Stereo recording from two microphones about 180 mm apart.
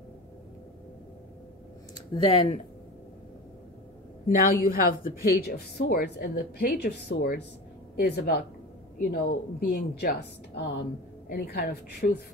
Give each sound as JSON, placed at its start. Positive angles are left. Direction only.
{"t": 2.0, "sound": "speech", "side_deg": 30}
{"t": 4.3, "sound": "a woman's voice", "side_deg": 50}
{"t": 5.4, "sound": "a woman's voice", "side_deg": 65}